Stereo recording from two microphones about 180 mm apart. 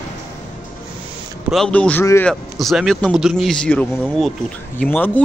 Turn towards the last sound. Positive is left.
turn(degrees=10)  # may be behind; listen again after turning